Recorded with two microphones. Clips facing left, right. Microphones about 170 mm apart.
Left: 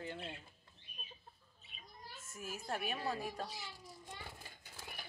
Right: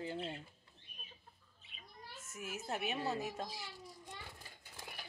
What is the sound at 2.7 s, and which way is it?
Speech, 20° right (ahead or behind).